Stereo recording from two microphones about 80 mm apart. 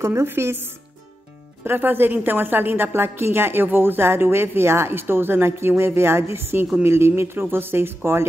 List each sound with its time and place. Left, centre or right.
0.0 s speech: right
1.6 s a woman's voice: right